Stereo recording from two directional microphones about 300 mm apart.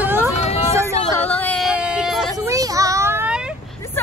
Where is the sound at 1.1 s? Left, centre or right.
Centre.